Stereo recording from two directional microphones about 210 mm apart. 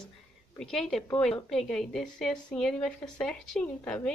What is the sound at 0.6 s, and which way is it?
A woman's voice, centre (ahead or behind).